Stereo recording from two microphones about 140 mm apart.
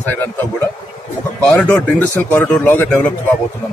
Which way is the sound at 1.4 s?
10° left (ahead or behind).